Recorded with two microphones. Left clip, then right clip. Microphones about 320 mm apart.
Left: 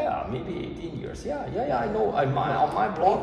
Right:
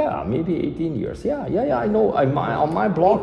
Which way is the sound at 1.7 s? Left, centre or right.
Right.